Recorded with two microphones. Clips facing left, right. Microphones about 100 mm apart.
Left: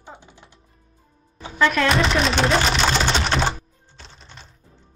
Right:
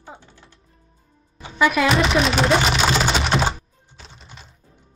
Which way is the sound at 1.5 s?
10° right (ahead or behind).